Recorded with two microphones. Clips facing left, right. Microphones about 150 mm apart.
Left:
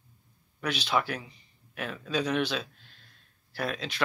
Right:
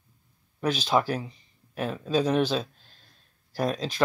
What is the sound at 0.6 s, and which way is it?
Speech, 40° right (ahead or behind).